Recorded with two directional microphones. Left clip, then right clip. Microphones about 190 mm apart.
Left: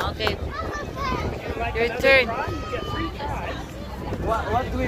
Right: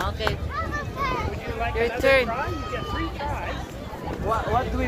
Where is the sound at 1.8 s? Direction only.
Centre (ahead or behind).